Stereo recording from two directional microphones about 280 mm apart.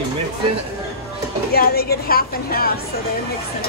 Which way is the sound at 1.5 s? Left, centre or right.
Left.